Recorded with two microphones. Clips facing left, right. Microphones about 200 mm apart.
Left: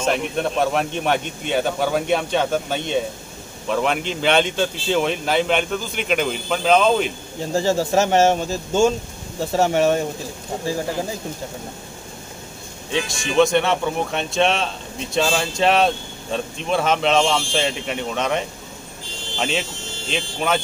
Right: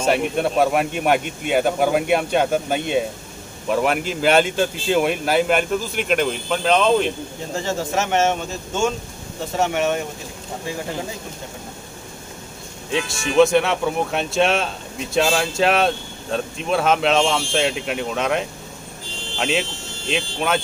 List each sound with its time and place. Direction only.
0.0 s speech: 10° right (ahead or behind)
7.5 s speech: 35° left (ahead or behind)
12.9 s speech: 5° right (ahead or behind)